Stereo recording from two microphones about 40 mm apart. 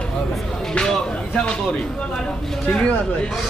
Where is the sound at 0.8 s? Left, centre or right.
Left.